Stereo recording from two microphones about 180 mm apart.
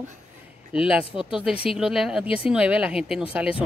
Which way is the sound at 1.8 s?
5° right (ahead or behind).